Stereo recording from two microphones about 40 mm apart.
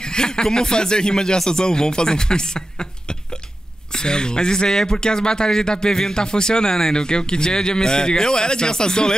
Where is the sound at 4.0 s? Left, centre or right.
Left.